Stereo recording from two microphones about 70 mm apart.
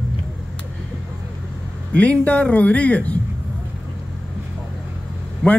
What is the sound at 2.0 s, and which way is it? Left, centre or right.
Speech, left.